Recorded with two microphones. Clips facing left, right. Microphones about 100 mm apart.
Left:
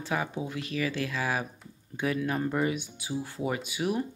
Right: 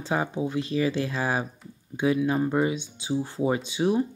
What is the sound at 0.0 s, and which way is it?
Speech, 25° right (ahead or behind).